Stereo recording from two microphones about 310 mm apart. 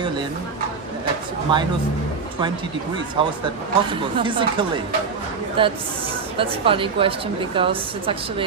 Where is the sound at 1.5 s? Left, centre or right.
Centre.